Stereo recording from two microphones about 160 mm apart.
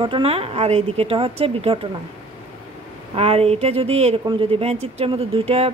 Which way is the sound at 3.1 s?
40° right (ahead or behind).